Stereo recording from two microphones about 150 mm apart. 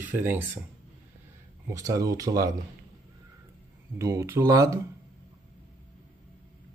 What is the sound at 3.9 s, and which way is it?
Speech, 20° right (ahead or behind).